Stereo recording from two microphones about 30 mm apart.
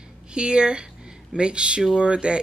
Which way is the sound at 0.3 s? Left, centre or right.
Right.